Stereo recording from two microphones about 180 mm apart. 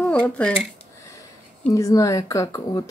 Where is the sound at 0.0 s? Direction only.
5° left (ahead or behind).